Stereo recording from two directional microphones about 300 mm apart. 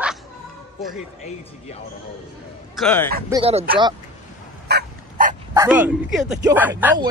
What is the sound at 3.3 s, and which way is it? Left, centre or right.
Speech, centre.